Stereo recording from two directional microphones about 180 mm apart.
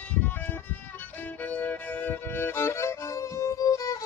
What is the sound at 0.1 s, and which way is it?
Music, 10° left (ahead or behind).